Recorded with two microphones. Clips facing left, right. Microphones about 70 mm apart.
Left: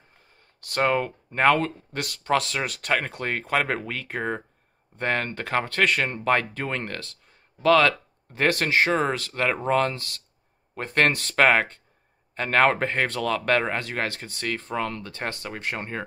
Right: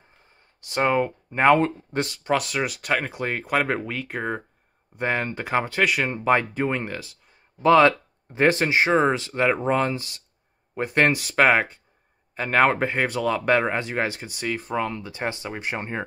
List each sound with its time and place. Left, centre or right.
0.6 s speech: centre
2.2 s speech: centre
7.6 s speech: right